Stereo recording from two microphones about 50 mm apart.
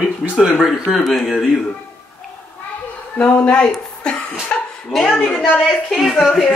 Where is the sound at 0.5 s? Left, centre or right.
Centre.